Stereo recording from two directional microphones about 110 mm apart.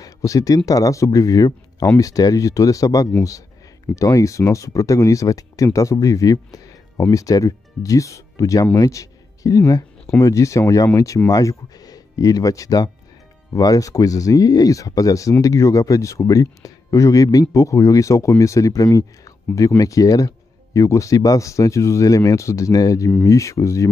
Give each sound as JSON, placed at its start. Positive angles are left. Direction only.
{"t": 0.0, "sound": "speech", "side_deg": 30}